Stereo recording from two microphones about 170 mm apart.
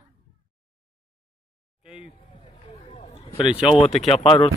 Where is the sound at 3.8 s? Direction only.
35° left (ahead or behind).